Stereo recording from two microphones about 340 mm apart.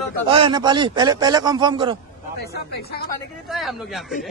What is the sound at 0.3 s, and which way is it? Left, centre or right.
A man's voice, centre.